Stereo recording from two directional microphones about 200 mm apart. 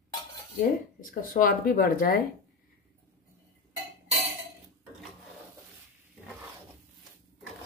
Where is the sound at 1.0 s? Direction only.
45° left (ahead or behind).